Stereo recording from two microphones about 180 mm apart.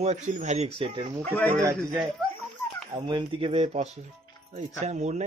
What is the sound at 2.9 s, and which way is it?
Speech, 25° right (ahead or behind).